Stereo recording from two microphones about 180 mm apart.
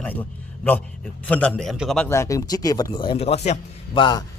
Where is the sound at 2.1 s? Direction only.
15° left (ahead or behind); by 4.0 s 35° left (ahead or behind).